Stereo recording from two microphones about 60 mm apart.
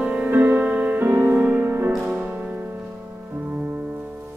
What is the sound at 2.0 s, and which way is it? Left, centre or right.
Music, centre.